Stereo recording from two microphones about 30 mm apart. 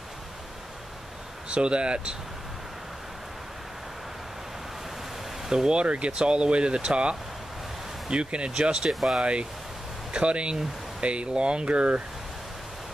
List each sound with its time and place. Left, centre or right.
1.5 s speech: right
5.5 s speech: right
5.8 s speech: right
8.8 s speech: centre
9.2 s speech: right